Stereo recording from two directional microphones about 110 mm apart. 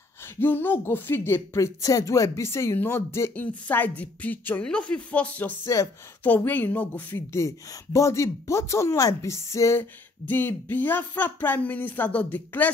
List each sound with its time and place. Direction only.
0.2 s speech: 20° left (ahead or behind)
5.7 s speech: 25° left (ahead or behind)
6.2 s a woman's voice: 15° left (ahead or behind)